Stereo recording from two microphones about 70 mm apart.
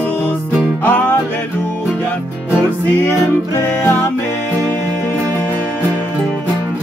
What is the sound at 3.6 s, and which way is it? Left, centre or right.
Music, left.